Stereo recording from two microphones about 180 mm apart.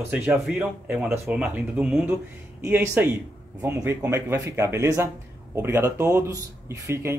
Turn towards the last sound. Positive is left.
turn(degrees=-15)  # may be behind; listen again after turning